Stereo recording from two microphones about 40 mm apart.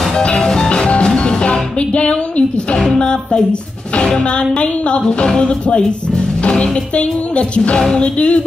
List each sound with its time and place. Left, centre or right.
0.1 s music: left
2.9 s speech: left
3.9 s music: left